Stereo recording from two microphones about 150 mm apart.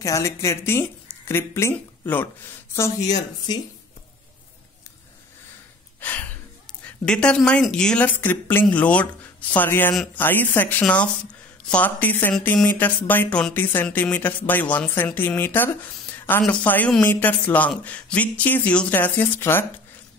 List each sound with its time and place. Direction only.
0.0 s speech: 20° left (ahead or behind)
3.5 s speech: 30° left (ahead or behind)
5.9 s gasp: 10° left (ahead or behind)
7.1 s speech: 5° left (ahead or behind)